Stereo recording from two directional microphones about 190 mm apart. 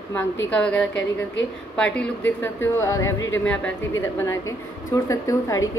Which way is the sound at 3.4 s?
5° left (ahead or behind).